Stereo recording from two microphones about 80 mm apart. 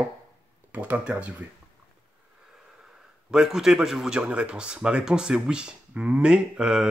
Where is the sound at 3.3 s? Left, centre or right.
Centre.